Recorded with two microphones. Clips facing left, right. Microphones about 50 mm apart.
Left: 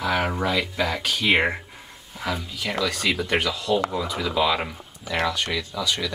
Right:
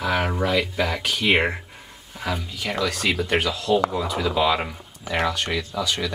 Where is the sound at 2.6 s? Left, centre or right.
Centre.